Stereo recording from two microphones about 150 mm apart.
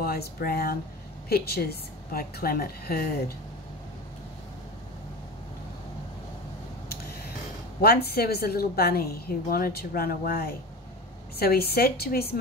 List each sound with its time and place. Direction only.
0.0 s a woman's voice: 90° left
7.8 s a woman's voice: 90° left